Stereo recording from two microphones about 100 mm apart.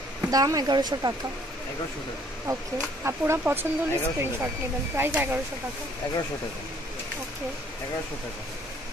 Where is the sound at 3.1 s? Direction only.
25° right (ahead or behind).